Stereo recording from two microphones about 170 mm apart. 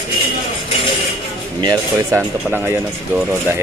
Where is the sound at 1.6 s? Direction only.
20° right (ahead or behind).